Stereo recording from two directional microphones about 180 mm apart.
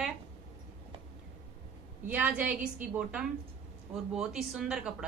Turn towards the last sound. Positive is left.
turn(degrees=-5)  # may be behind; listen again after turning